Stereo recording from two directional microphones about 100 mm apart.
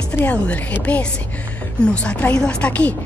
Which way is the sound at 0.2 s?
15° left (ahead or behind).